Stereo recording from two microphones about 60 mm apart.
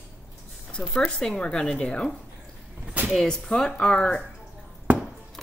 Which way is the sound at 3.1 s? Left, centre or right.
Centre.